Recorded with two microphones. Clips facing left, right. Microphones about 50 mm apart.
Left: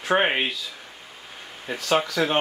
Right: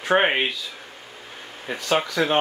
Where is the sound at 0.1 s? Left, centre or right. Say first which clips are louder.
Right 2 dB; centre.